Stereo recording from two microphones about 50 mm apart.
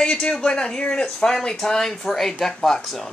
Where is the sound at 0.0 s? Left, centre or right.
Centre.